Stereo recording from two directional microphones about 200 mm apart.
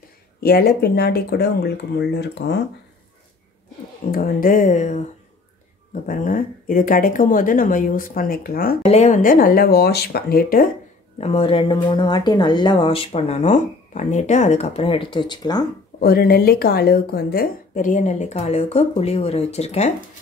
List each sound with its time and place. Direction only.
0.4 s speech: 50° left (ahead or behind)
4.1 s speech: 45° left (ahead or behind)
6.0 s speech: 40° left (ahead or behind)
8.8 s speech: 35° left (ahead or behind)
11.1 s speech: 30° left (ahead or behind)
16.0 s speech: 50° left (ahead or behind); by 19.9 s 35° left (ahead or behind)